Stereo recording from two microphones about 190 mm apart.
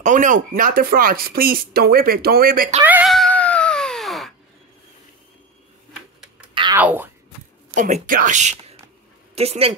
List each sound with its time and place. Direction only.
0.0 s speech: 40° right (ahead or behind)
2.8 s cat: 10° right (ahead or behind)
6.5 s a sound: 25° right (ahead or behind)
6.8 s wail: 10° right (ahead or behind)
7.7 s speech: 45° right (ahead or behind)